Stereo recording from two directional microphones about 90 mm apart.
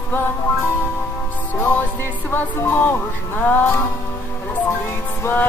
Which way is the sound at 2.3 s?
25° left (ahead or behind).